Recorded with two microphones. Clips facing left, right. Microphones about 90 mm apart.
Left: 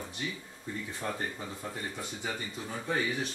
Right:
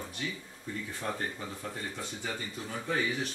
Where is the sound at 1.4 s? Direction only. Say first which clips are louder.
Even; 15° left (ahead or behind).